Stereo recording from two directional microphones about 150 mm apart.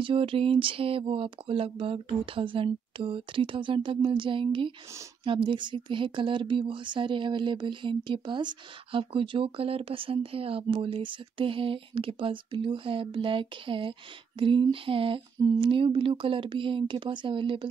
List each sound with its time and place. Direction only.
0.0 s speech: 35° right (ahead or behind)